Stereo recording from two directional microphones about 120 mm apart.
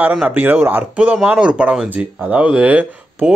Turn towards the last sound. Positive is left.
turn(degrees=-10)  # may be behind; listen again after turning